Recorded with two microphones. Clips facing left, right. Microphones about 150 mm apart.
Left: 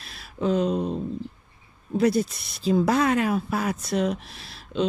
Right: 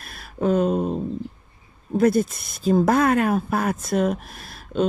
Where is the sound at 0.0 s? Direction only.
50° right (ahead or behind).